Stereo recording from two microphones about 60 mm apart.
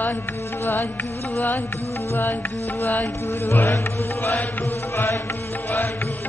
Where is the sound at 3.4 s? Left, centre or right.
Left.